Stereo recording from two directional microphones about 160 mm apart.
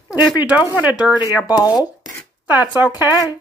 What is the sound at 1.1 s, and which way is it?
Speech, 25° left (ahead or behind).